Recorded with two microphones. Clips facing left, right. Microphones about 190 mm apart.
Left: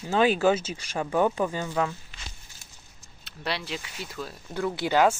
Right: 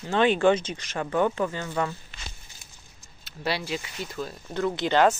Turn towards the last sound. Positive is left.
turn(degrees=10)  # may be behind; listen again after turning